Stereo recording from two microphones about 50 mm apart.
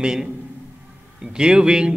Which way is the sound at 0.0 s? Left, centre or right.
Centre.